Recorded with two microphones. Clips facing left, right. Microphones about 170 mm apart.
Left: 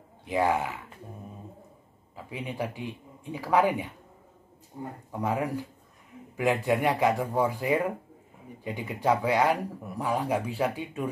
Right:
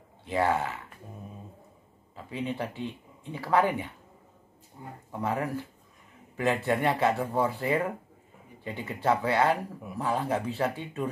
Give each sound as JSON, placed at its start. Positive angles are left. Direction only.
{"t": 0.2, "sound": "speech", "side_deg": 15}
{"t": 2.1, "sound": "speech", "side_deg": 10}
{"t": 5.1, "sound": "speech", "side_deg": 15}